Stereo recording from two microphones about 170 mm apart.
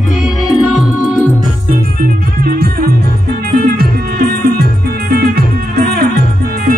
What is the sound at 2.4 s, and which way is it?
Music, 65° right (ahead or behind).